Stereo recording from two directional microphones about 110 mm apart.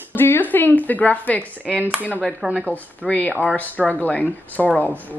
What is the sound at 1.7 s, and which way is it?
Speech, 10° right (ahead or behind).